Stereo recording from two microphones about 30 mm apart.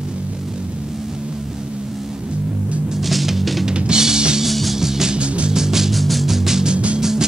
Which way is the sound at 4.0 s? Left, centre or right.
Centre.